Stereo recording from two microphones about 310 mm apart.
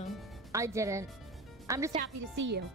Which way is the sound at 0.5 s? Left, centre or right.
Centre.